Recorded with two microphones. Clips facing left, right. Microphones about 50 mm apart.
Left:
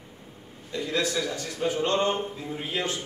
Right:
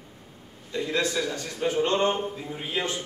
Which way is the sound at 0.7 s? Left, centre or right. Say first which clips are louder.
Right 1 dB; centre.